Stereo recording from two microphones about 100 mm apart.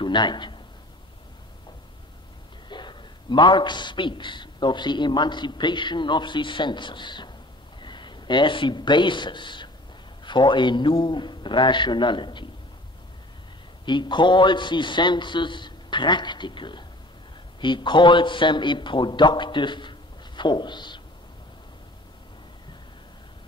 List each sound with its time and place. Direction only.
0.0 s a man's voice: 50° left (ahead or behind)
2.7 s a man's voice: 50° left (ahead or behind)
13.8 s a man's voice: 50° left (ahead or behind)